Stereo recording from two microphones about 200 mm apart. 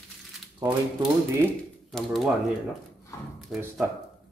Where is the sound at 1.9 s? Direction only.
Centre (ahead or behind).